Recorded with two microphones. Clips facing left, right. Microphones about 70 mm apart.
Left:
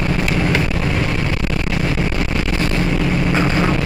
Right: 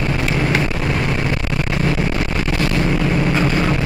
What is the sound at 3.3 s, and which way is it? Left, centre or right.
Vehicle, centre.